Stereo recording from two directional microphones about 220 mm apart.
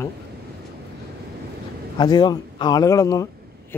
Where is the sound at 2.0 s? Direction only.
20° left (ahead or behind).